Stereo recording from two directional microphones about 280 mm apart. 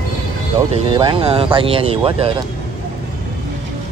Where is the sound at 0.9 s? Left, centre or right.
Centre.